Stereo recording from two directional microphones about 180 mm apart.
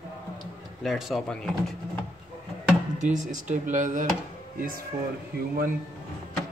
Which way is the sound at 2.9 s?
45° right (ahead or behind).